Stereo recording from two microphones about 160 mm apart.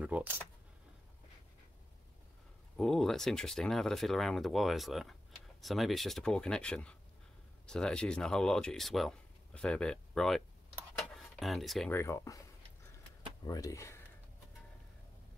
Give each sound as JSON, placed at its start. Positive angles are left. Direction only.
{"t": 0.0, "sound": "speech", "side_deg": -10}
{"t": 2.8, "sound": "speech", "side_deg": 0}
{"t": 11.9, "sound": "speech", "side_deg": 15}